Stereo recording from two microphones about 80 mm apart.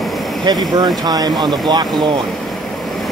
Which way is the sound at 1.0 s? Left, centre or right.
Right.